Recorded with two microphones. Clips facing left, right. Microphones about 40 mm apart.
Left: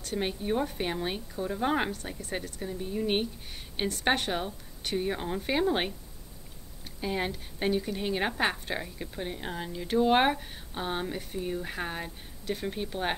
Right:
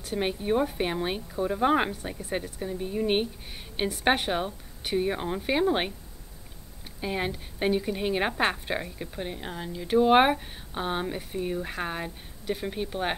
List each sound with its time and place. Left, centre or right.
0.0 s speech: centre
7.0 s speech: centre
9.8 s speech: centre